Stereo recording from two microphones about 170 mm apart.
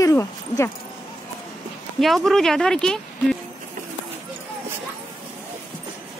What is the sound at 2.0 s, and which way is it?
Speech, centre (ahead or behind).